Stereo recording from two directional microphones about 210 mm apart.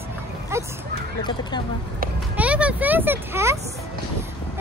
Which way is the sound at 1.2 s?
20° left (ahead or behind).